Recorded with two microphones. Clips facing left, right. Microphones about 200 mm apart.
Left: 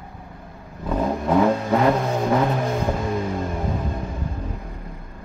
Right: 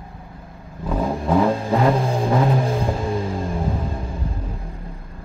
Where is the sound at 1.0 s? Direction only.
Centre (ahead or behind).